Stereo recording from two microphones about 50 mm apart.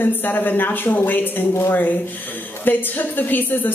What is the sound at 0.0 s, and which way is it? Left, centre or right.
A woman's voice, left.